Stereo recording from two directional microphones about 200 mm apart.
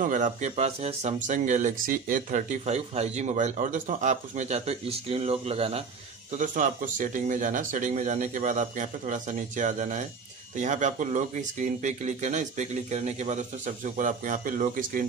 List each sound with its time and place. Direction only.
0.0 s speech: 40° right (ahead or behind)
6.3 s speech: 40° right (ahead or behind)